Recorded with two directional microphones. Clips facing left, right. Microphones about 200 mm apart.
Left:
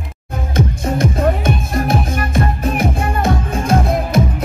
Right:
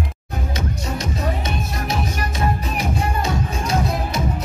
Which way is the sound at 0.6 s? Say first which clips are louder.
Left 11 dB; 50° left (ahead or behind).